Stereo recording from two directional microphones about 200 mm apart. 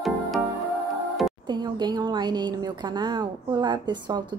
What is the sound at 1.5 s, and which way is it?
A woman's voice, 20° right (ahead or behind).